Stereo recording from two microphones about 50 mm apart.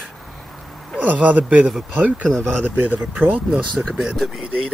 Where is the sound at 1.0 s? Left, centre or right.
Right.